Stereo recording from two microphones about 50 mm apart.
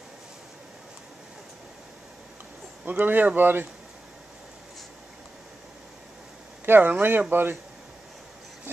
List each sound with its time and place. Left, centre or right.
2.8 s speech: right
6.6 s speech: right